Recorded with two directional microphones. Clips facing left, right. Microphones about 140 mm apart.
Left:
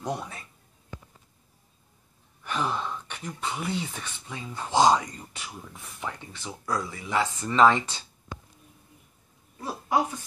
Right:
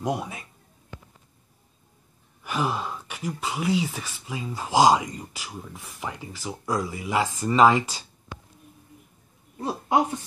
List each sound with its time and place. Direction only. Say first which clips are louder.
0.0 s speech: right 4 dB; 15° right (ahead or behind)
2.4 s speech: right 2 dB; 5° right (ahead or behind)
6.6 s speech: right 3 dB; 15° right (ahead or behind)
9.6 s speech: right 3 dB; 20° right (ahead or behind)